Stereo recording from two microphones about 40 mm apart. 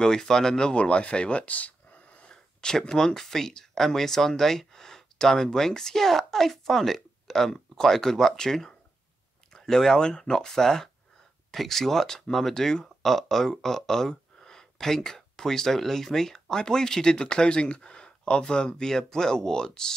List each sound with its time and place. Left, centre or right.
0.0 s speech: centre; by 2.2 s left
2.2 s a sound: centre
3.2 s speech: centre